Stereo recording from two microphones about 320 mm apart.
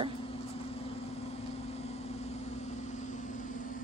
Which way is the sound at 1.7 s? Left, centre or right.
Centre.